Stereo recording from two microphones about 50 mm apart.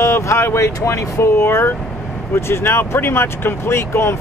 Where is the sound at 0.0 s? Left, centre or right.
Left.